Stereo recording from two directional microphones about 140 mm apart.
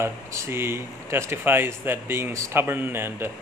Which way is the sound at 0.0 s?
20° right (ahead or behind).